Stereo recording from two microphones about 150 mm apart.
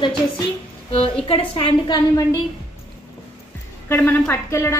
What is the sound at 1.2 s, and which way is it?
Speech, 35° left (ahead or behind).